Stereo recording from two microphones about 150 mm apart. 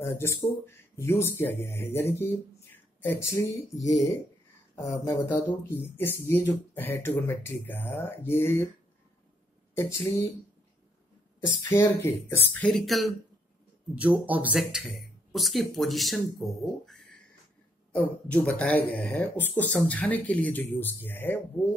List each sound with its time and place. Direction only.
0.0 s speech: 15° left (ahead or behind)
9.8 s speech: 20° left (ahead or behind)
11.7 s speech: 15° left (ahead or behind); by 13.1 s centre (ahead or behind)
13.9 s speech: 10° right (ahead or behind); by 21.4 s 15° left (ahead or behind)